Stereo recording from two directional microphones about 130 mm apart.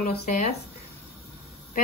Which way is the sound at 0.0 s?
85° left.